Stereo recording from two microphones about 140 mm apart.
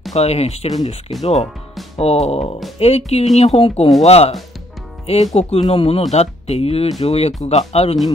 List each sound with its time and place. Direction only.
0.1 s speech: 50° left (ahead or behind)